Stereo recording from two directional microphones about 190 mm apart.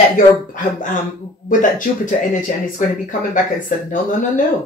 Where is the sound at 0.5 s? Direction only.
45° left (ahead or behind).